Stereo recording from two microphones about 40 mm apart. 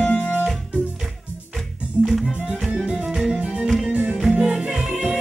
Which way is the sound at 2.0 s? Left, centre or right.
Centre.